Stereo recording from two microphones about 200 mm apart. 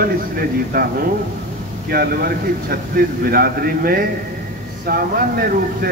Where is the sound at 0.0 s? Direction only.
50° right (ahead or behind).